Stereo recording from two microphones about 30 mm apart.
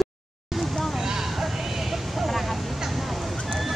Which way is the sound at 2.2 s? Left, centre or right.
Centre.